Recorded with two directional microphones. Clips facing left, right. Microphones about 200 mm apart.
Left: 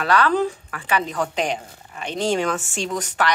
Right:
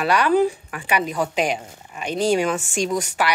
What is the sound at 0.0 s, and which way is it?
Speech, 10° right (ahead or behind).